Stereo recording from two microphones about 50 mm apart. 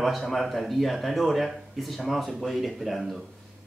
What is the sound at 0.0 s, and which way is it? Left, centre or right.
Speech, centre.